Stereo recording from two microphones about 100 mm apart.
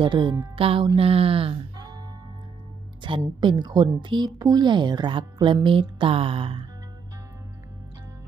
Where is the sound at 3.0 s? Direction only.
55° right (ahead or behind).